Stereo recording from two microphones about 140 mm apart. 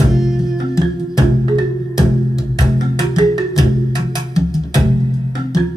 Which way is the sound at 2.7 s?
30° right (ahead or behind).